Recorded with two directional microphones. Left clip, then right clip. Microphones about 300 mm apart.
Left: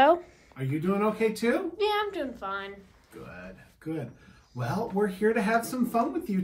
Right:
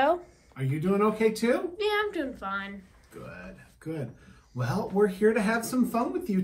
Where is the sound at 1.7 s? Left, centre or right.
Centre.